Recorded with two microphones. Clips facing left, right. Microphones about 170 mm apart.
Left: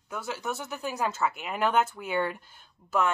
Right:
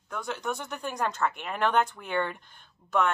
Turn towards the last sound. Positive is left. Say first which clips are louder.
# even
turn(degrees=0)  # may be behind; listen again after turning